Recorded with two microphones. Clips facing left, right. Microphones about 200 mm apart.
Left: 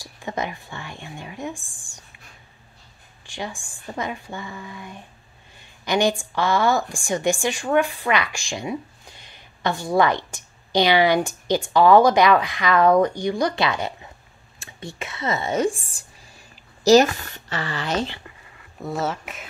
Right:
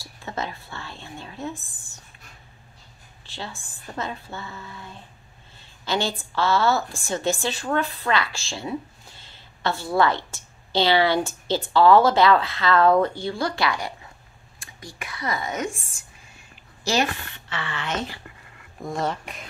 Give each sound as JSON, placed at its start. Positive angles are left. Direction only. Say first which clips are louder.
{"t": 0.0, "sound": "speech", "louder": "left 3 dB", "side_deg": 15}
{"t": 3.3, "sound": "a woman's voice", "louder": "left 4 dB", "side_deg": 15}
{"t": 18.8, "sound": "speech", "louder": "left 1 dB", "side_deg": 5}